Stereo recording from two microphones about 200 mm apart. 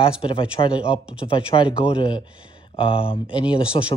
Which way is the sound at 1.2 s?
25° left (ahead or behind).